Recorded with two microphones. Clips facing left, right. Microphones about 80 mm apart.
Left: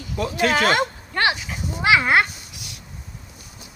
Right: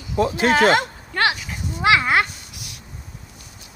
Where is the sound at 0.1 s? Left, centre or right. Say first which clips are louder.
Right 3 dB; right.